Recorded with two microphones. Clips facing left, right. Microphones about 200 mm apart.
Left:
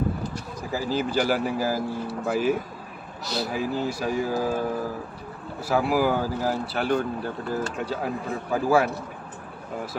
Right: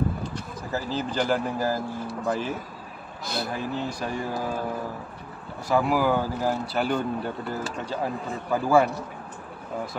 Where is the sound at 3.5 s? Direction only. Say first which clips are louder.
Left 3 dB; 5° left (ahead or behind).